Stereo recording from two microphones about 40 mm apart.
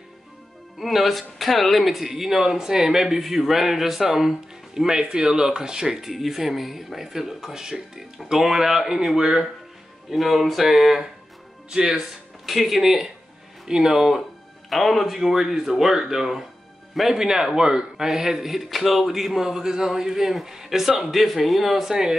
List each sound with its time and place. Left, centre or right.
0.7 s speech: centre
4.8 s speech: centre
10.1 s speech: centre
11.7 s speech: centre
12.4 s speech: centre
14.7 s speech: centre